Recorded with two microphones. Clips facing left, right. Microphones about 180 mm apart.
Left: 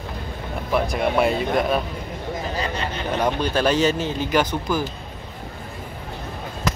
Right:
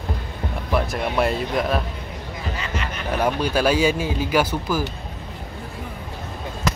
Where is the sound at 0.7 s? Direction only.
Centre (ahead or behind).